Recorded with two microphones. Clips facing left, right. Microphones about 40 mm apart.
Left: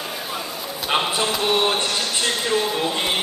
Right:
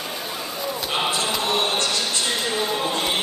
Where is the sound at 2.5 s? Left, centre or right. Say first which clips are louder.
Left 3 dB; centre.